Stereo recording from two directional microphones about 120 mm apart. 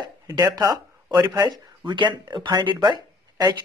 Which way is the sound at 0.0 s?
30° right (ahead or behind).